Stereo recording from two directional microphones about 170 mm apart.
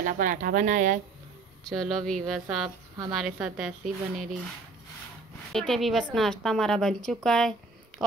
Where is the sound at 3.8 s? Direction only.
50° right (ahead or behind).